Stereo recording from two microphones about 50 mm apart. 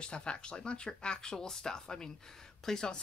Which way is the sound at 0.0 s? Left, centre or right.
Centre.